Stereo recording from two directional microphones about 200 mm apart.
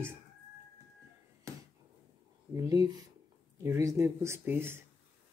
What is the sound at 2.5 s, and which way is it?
Speech, 20° right (ahead or behind).